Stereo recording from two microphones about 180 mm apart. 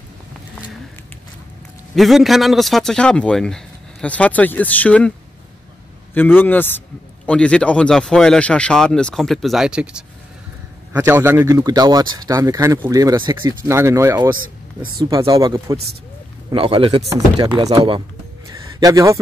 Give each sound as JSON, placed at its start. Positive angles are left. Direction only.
{"t": 2.0, "sound": "a man's voice", "side_deg": 0}
{"t": 6.1, "sound": "a man's voice", "side_deg": 10}
{"t": 16.5, "sound": "speech", "side_deg": -30}
{"t": 18.5, "sound": "a sound", "side_deg": -20}